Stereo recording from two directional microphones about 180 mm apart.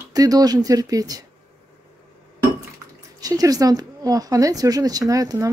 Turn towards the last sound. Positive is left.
turn(degrees=-20)  # may be behind; listen again after turning